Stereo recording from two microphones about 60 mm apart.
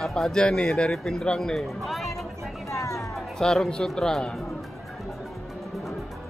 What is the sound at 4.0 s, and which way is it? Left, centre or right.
Speech, centre.